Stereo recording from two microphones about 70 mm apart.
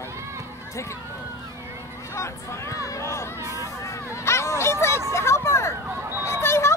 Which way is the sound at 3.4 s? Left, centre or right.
Right.